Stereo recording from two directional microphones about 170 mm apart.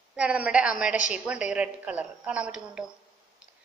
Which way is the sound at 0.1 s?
5° right (ahead or behind).